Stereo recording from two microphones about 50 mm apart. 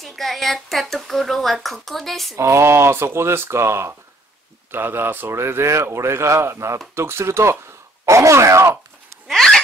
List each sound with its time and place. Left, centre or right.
0.0 s speech: centre
2.3 s speech: right
4.6 s a man's voice: right
8.0 s speech: right
9.3 s a sound: centre